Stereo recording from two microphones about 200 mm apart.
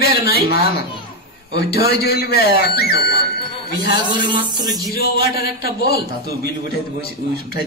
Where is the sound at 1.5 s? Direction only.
50° left (ahead or behind).